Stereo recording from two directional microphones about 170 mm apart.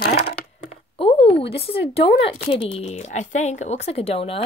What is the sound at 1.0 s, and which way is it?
Speech, 35° left (ahead or behind).